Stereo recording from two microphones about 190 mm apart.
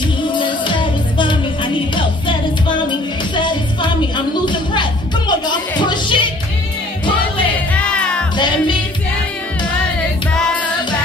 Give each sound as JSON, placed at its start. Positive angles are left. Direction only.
{"t": 0.2, "sound": "music", "side_deg": 25}
{"t": 5.5, "sound": "music", "side_deg": 25}
{"t": 7.5, "sound": "music", "side_deg": 5}
{"t": 8.4, "sound": "music", "side_deg": 25}